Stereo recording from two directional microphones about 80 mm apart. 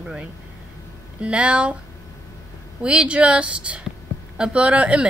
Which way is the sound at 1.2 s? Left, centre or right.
Centre.